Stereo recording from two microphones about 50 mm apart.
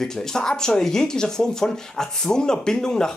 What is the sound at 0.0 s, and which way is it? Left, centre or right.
Speech, centre.